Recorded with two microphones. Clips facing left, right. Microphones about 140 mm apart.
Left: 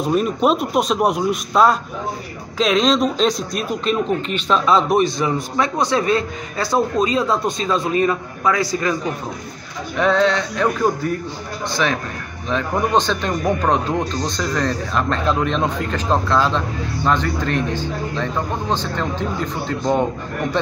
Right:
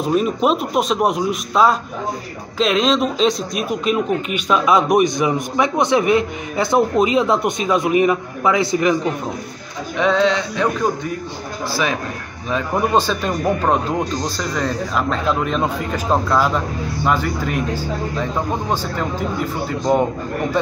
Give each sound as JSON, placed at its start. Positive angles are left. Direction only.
{"t": 0.0, "sound": "speech", "side_deg": 0}
{"t": 9.9, "sound": "speech", "side_deg": 0}